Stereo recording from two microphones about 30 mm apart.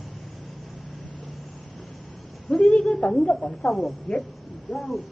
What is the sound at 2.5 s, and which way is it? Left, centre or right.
Speech, left.